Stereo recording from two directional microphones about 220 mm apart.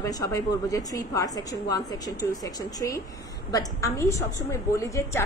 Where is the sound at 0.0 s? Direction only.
15° left (ahead or behind).